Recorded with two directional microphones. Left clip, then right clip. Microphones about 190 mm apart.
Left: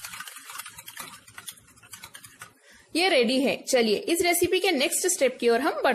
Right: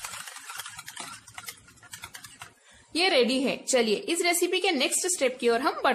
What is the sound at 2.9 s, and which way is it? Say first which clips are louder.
A woman's voice: left 1 dB; 20° left (ahead or behind).